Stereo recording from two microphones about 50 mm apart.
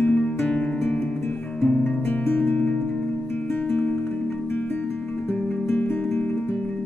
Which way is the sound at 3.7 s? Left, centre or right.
Left.